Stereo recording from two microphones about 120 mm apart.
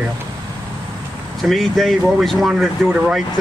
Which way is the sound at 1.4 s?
Centre (ahead or behind).